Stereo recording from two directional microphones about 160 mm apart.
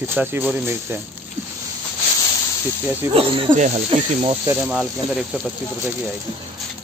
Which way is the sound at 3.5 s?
50° right (ahead or behind).